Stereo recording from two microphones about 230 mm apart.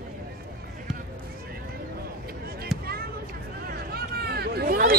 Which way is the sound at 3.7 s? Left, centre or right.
Right.